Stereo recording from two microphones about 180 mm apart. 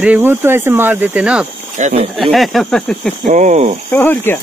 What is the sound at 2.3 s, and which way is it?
Speech, centre (ahead or behind).